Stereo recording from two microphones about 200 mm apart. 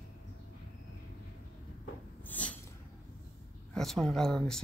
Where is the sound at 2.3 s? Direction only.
5° left (ahead or behind).